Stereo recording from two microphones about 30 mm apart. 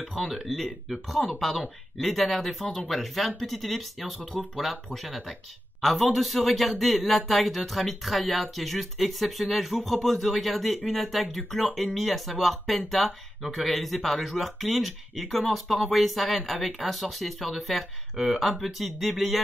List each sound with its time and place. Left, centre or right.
0.3 s speech: centre